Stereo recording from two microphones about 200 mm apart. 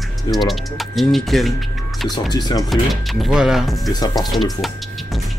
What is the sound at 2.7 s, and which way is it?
Speech, centre (ahead or behind).